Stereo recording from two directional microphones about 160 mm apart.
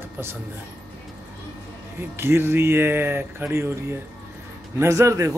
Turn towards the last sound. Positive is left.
turn(degrees=-20)  # may be behind; listen again after turning